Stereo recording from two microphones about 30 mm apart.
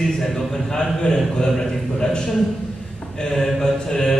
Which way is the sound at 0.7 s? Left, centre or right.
Left.